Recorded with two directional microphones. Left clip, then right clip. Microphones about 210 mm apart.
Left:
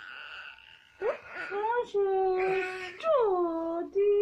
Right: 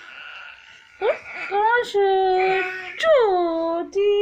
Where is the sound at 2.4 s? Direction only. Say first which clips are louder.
Right 9 dB; 15° left (ahead or behind).